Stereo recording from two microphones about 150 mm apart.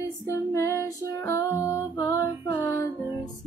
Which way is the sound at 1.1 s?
20° left (ahead or behind).